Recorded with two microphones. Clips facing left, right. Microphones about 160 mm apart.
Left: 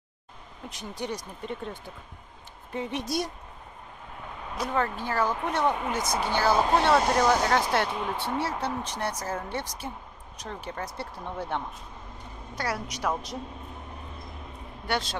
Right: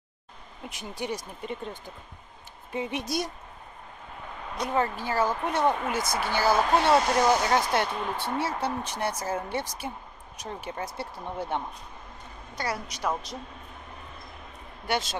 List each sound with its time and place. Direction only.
0.7 s speech: 5° right (ahead or behind)
4.7 s speech: 5° right (ahead or behind)
6.0 s a woman's voice: 15° left (ahead or behind)
6.3 s speech: 5° right (ahead or behind)
12.5 s a woman's voice: 10° left (ahead or behind)
14.9 s speech: 5° right (ahead or behind)